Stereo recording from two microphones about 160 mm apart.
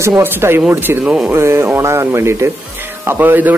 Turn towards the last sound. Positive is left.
turn(degrees=-10)  # may be behind; listen again after turning